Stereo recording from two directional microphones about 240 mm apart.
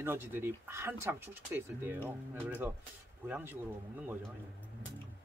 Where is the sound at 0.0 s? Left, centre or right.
Centre.